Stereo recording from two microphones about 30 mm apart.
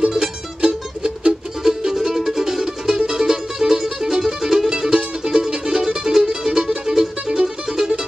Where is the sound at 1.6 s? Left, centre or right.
Centre.